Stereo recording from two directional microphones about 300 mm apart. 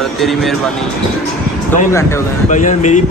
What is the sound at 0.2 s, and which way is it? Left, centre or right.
Speech, centre.